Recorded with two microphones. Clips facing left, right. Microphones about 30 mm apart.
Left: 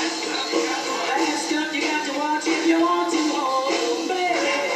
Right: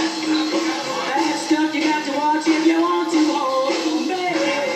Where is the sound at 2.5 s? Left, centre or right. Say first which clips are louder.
Right 1 dB; centre.